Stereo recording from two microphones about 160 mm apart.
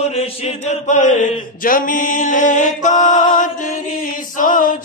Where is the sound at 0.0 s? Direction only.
40° left (ahead or behind).